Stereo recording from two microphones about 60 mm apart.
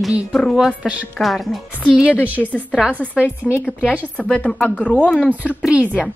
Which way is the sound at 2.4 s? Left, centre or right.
Centre.